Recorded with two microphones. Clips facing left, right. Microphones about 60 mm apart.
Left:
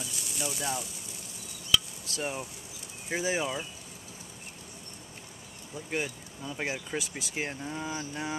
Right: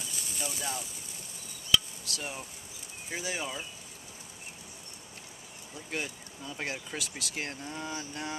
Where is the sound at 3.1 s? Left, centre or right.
Centre.